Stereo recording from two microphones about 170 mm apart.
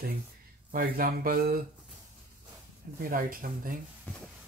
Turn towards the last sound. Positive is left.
turn(degrees=-55)  # may be behind; listen again after turning